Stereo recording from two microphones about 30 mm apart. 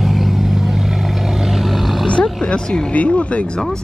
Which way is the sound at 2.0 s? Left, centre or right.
Left.